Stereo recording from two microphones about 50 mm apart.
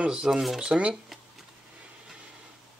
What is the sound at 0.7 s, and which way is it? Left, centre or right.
Speech, right.